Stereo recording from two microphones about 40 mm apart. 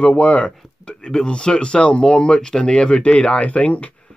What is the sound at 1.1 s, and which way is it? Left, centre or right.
Speech, centre.